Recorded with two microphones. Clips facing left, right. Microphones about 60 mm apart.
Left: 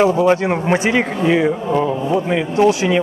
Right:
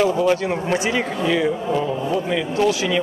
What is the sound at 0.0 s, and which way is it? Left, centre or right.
A man's voice, left.